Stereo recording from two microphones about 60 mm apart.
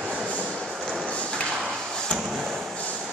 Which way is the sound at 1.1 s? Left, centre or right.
Centre.